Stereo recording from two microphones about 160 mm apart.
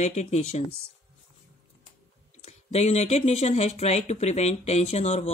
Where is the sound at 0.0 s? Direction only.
45° left (ahead or behind).